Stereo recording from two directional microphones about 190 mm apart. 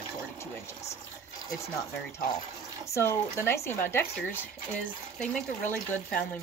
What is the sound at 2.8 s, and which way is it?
Speech, 15° left (ahead or behind).